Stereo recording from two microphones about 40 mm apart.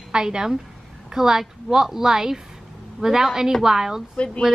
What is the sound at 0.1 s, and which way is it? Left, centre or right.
A woman's voice, centre.